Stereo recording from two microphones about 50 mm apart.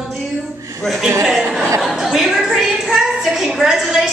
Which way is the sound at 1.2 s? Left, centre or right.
Centre.